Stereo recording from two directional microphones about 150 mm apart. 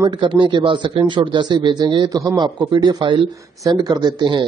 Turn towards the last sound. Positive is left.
turn(degrees=-30)  # may be behind; listen again after turning